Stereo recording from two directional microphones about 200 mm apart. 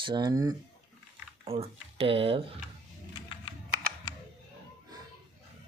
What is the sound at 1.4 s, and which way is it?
Speech, 30° right (ahead or behind).